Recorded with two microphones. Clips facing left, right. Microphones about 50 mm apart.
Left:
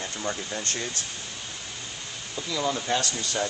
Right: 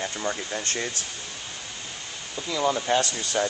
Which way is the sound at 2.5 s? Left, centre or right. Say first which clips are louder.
Right 3 dB; centre.